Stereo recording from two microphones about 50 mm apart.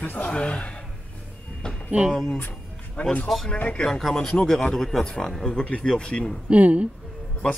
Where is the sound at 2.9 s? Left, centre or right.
Left.